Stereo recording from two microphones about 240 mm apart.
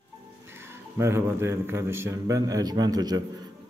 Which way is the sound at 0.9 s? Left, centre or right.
Centre.